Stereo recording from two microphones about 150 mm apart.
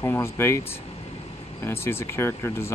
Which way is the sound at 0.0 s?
15° left (ahead or behind).